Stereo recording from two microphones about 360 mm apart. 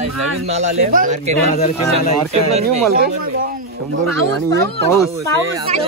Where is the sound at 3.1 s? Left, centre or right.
Right.